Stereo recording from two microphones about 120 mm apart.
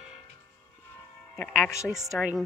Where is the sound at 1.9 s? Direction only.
5° right (ahead or behind).